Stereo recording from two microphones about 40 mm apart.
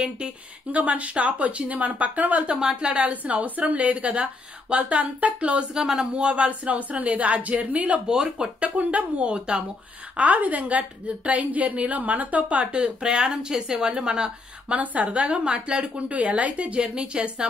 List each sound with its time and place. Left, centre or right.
0.7 s a woman's voice: right
2.6 s speech: right
3.0 s a woman's voice: right
5.8 s speech: centre
6.1 s a woman's voice: right
8.1 s speech: right
8.5 s a woman's voice: right
14.7 s a woman's voice: right